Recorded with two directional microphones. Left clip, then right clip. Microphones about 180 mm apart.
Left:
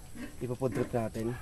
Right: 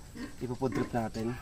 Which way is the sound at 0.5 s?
30° left (ahead or behind).